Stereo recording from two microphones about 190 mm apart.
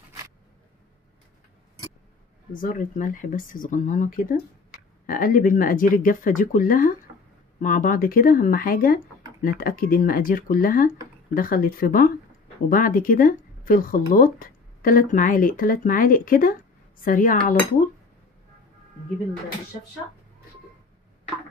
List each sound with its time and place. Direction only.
2.5 s speech: 45° left (ahead or behind)